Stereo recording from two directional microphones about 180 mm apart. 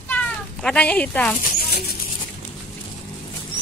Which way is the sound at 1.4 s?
60° left (ahead or behind).